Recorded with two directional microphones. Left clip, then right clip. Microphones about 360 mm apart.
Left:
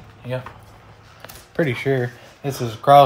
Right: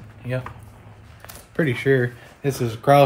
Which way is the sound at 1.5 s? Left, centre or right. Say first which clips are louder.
Right 1 dB; centre.